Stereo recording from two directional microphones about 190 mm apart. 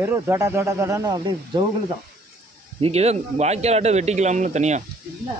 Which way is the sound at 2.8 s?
35° right (ahead or behind).